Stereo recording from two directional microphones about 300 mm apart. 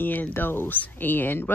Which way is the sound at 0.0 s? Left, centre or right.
Centre.